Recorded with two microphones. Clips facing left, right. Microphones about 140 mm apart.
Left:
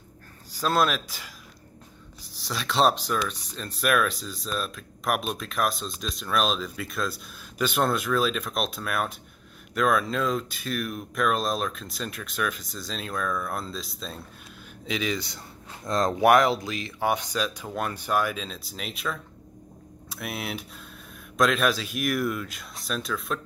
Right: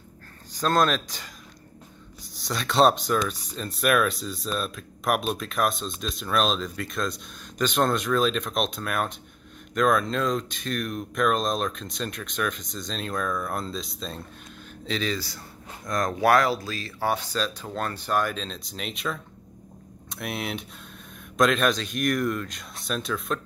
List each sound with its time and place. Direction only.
0.5 s speech: 5° left (ahead or behind)
2.3 s speech: centre (ahead or behind)